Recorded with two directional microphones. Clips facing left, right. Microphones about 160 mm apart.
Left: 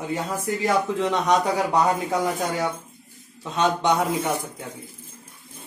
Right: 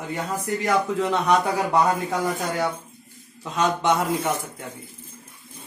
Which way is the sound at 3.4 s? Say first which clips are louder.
Left 1 dB; centre (ahead or behind).